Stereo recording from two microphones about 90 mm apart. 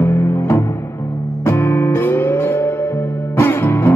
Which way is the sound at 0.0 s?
25° left (ahead or behind).